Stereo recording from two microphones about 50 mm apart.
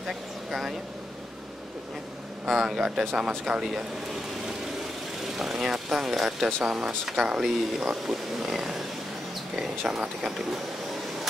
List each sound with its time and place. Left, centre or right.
2.4 s speech: centre
5.2 s speech: centre